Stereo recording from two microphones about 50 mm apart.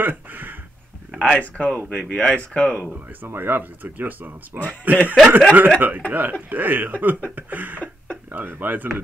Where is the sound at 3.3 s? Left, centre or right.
Right.